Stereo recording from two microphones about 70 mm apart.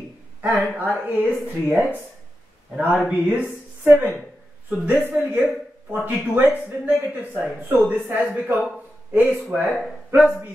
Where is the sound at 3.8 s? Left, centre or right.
Right.